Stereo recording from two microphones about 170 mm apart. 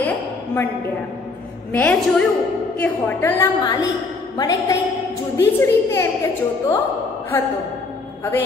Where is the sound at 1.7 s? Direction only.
5° left (ahead or behind).